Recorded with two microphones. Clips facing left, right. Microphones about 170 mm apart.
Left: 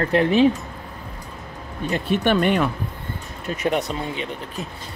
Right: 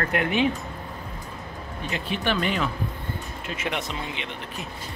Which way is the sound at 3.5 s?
40° left (ahead or behind).